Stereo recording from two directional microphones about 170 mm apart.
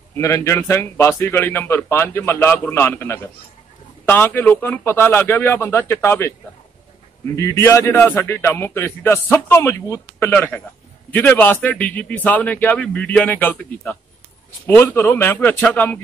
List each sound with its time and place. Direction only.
0.2 s a man's voice: 15° left (ahead or behind)
7.3 s a man's voice: 15° left (ahead or behind)